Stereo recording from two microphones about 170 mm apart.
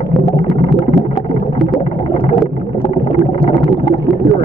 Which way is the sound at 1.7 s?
30° left (ahead or behind).